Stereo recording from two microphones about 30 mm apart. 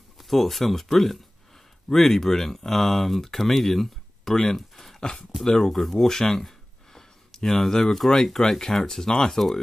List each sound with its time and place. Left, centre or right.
0.2 s speech: centre
4.2 s speech: centre
5.1 s speech: left
5.7 s speech: centre
6.0 s a sound: centre
8.1 s speech: centre